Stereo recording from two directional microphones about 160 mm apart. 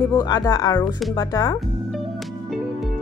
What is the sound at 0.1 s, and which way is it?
Speech, 25° left (ahead or behind).